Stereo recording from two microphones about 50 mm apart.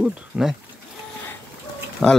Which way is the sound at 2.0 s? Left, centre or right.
Centre.